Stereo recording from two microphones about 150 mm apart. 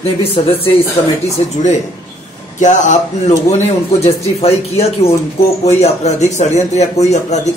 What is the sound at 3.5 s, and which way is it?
Speech, 45° left (ahead or behind).